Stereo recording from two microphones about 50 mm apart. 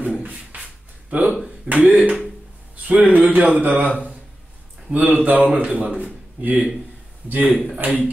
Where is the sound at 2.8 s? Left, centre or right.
Right.